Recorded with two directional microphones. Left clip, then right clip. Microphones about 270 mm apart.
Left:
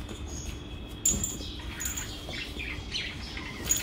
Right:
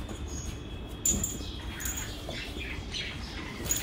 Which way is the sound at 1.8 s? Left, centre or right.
Centre.